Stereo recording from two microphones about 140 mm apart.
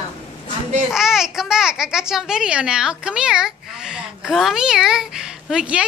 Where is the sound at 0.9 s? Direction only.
5° right (ahead or behind).